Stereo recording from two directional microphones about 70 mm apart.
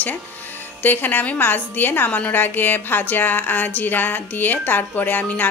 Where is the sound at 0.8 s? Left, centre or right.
Left.